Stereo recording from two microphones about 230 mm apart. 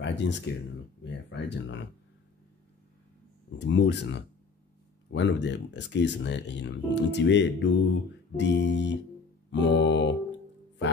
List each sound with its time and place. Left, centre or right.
0.0 s speech: left
1.0 s a sound: left
3.5 s speech: left